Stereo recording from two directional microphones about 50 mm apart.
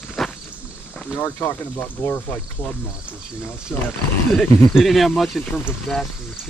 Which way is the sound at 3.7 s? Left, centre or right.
Centre.